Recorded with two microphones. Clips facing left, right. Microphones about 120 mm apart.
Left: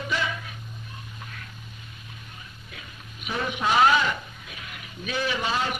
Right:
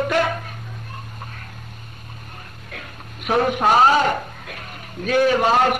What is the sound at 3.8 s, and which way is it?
Speech, 45° right (ahead or behind).